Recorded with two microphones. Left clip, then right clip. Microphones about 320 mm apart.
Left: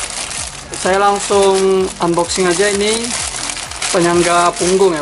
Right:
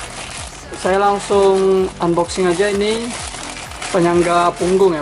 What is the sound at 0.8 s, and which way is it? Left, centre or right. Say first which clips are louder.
Speech: left 2 dB; centre.